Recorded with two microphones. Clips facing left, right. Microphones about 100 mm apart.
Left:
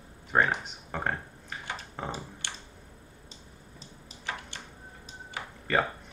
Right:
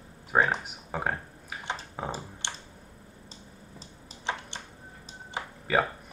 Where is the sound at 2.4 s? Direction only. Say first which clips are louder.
Right 3 dB; 20° right (ahead or behind).